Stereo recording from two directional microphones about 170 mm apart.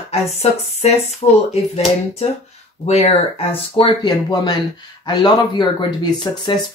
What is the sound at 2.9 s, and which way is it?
Speech, 35° left (ahead or behind).